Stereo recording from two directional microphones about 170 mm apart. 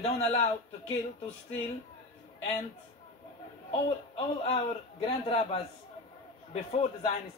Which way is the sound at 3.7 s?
35° left (ahead or behind).